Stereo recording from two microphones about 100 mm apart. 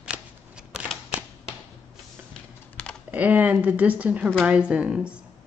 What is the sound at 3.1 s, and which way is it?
Speech, 15° right (ahead or behind).